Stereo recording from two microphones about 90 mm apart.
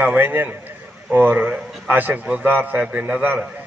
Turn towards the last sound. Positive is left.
turn(degrees=-15)  # may be behind; listen again after turning